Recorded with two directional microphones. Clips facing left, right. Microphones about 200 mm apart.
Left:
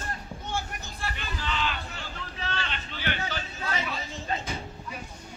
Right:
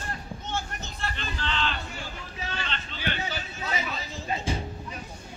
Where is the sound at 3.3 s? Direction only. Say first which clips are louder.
Even; 10° right (ahead or behind).